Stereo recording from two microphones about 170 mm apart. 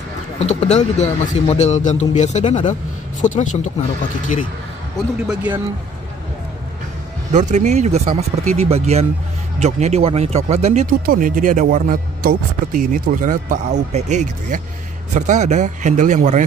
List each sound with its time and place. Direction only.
0.4 s a man's voice: 40° left (ahead or behind)
4.9 s a man's voice: 5° right (ahead or behind)
7.3 s speech: 45° right (ahead or behind)
11.1 s speech: 55° right (ahead or behind)